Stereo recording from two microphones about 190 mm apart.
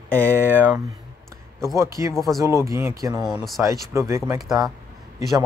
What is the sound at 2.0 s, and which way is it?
Speech, 15° right (ahead or behind).